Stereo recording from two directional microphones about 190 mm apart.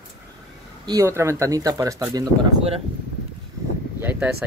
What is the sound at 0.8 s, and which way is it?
Speech, 15° right (ahead or behind).